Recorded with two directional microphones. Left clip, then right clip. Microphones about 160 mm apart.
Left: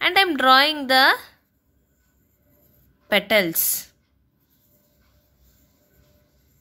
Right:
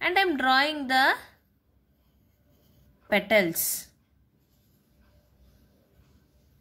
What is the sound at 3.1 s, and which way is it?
Speech, 15° left (ahead or behind).